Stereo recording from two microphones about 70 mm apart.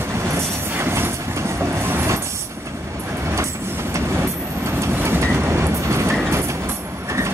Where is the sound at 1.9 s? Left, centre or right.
Right.